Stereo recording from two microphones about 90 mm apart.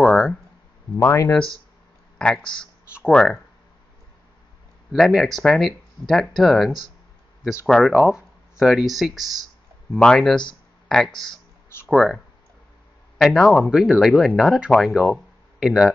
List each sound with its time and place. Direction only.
0.0 s a sound: centre (ahead or behind)
0.9 s speech: 35° left (ahead or behind)
2.1 s speech: 5° left (ahead or behind)
4.9 s speech: centre (ahead or behind)
7.9 s speech: 5° right (ahead or behind)
11.8 s a sound: 15° right (ahead or behind)
13.2 s speech: 5° left (ahead or behind)
13.5 s speech: 10° right (ahead or behind)